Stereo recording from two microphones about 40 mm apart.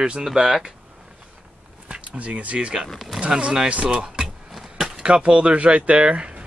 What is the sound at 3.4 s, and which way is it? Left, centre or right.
Speech, centre.